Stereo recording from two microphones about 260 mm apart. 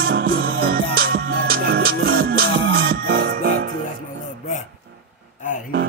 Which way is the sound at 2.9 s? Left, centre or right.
Right.